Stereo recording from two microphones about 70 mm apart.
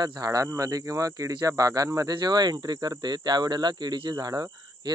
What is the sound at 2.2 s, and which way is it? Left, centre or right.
Speech, right.